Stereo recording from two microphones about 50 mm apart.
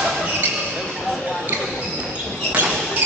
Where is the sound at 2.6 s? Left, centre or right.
Right.